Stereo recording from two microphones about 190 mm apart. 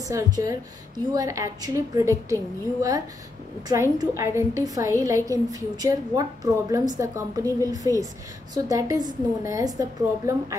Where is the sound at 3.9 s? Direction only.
15° right (ahead or behind).